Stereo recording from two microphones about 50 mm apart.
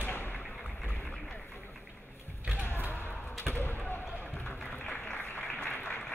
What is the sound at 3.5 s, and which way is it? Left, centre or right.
Basketball bounce, left.